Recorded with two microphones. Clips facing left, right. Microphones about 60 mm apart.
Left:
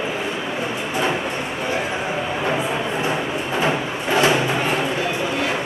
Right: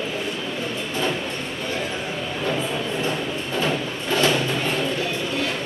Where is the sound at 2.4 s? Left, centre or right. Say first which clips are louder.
Left 1 dB; centre.